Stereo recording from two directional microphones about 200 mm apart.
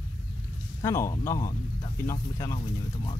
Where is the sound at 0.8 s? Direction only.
15° left (ahead or behind).